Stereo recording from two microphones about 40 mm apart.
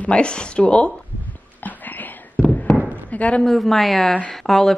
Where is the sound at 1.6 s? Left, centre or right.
Left.